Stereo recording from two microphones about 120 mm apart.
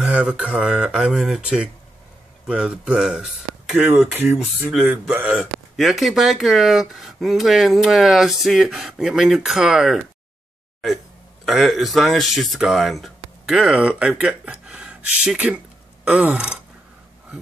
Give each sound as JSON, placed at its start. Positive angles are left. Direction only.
{"t": 0.0, "sound": "speech", "side_deg": -10}
{"t": 4.1, "sound": "speech", "side_deg": -15}
{"t": 5.8, "sound": "speech", "side_deg": 0}
{"t": 11.4, "sound": "speech", "side_deg": 0}